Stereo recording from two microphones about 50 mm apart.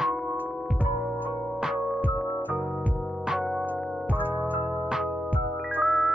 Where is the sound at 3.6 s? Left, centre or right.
Right.